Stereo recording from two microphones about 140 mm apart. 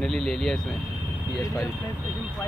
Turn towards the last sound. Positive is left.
turn(degrees=25)  # may be behind; listen again after turning